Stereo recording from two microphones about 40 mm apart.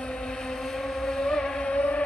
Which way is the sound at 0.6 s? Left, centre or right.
Centre.